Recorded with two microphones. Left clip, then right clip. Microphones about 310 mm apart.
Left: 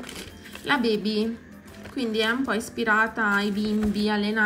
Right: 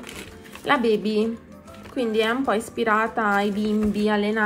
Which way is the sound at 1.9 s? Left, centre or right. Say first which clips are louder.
Right 3 dB; centre.